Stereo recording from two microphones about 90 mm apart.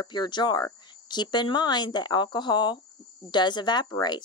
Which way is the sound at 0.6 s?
55° left (ahead or behind).